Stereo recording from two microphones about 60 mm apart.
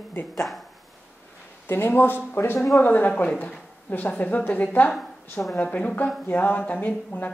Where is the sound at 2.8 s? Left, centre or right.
Left.